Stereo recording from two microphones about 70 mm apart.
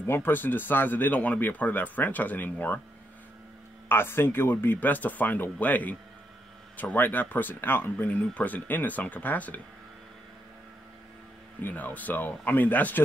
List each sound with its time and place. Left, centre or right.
0.0 s speech: left
3.9 s speech: left
8.1 s speech: left
11.6 s speech: left